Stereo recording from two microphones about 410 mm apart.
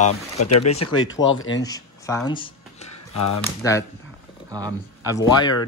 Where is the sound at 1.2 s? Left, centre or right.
Left.